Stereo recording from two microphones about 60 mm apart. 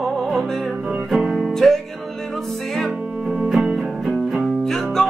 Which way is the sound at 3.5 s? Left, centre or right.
Centre.